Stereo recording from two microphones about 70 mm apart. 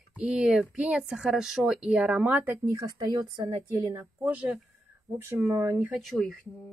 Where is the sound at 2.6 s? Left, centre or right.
Right.